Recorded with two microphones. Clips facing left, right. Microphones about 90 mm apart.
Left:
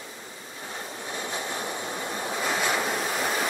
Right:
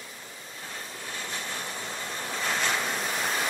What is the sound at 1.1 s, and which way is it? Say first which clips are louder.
Vehicle: left 4 dB; 20° left (ahead or behind).